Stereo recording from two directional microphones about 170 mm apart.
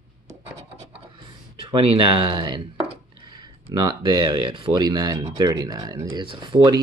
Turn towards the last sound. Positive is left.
turn(degrees=-25)  # may be behind; listen again after turning